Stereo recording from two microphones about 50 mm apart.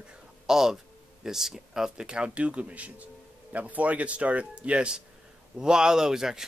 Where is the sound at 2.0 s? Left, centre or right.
Right.